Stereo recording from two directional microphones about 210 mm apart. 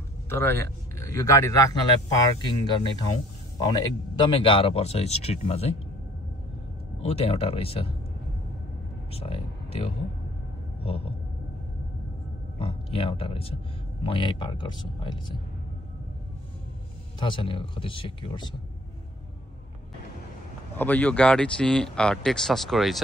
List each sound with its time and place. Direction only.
0.3 s a man's voice: 10° left (ahead or behind); by 5.8 s 30° left (ahead or behind)
7.0 s speech: 30° left (ahead or behind)
9.1 s speech: 30° left (ahead or behind)
10.8 s a sound: 25° left (ahead or behind)
12.5 s speech: 25° left (ahead or behind)
17.2 s speech: 20° left (ahead or behind)
20.7 s speech: 10° left (ahead or behind)